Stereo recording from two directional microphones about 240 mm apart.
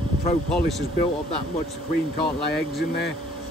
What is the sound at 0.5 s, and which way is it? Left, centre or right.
Speech, centre.